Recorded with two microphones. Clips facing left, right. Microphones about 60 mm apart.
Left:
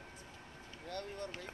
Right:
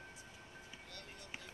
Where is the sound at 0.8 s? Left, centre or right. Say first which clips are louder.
Left 11 dB; left.